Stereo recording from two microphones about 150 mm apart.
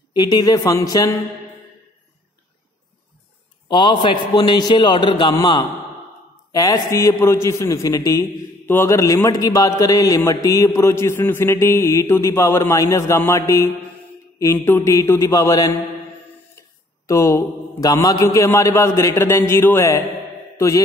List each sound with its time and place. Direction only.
0.1 s a man's voice: 25° left (ahead or behind)
3.6 s a man's voice: 30° left (ahead or behind)
20.5 s mantra: 20° left (ahead or behind)